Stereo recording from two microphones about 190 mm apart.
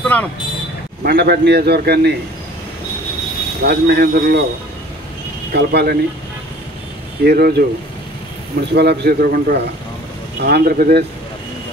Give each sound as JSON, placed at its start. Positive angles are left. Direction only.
{"t": 0.0, "sound": "vehicle", "side_deg": 10}
{"t": 1.0, "sound": "a man's voice", "side_deg": -60}
{"t": 3.6, "sound": "a man's voice", "side_deg": -60}
{"t": 5.5, "sound": "a man's voice", "side_deg": -60}
{"t": 7.2, "sound": "a man's voice", "side_deg": -55}
{"t": 8.7, "sound": "a man's voice", "side_deg": -60}